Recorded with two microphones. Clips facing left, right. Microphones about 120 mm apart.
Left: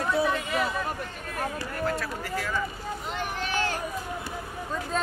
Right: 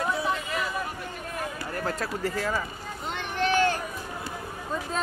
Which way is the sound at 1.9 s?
40° right (ahead or behind).